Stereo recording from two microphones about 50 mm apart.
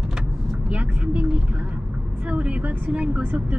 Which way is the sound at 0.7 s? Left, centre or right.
Right.